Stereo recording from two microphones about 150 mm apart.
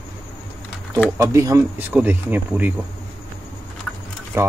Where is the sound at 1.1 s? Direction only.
20° right (ahead or behind).